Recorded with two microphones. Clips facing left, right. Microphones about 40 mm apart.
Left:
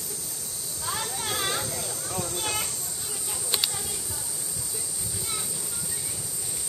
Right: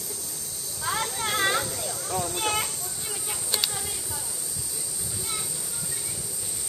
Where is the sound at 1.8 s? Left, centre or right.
Centre.